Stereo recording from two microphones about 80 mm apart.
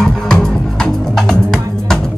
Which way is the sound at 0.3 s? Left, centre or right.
Centre.